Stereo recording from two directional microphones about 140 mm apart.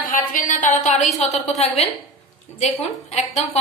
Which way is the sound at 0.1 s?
70° left (ahead or behind).